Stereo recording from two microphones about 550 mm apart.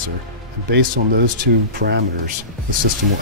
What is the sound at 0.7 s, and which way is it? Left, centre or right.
Speech, centre.